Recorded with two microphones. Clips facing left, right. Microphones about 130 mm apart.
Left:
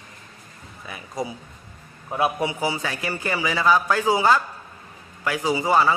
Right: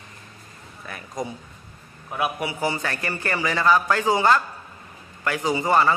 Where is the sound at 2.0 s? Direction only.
30° left (ahead or behind).